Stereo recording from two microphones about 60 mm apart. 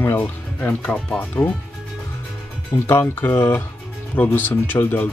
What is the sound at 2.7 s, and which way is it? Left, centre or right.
Speech, left.